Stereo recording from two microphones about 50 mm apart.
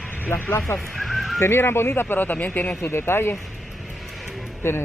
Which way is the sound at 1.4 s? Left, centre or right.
Left.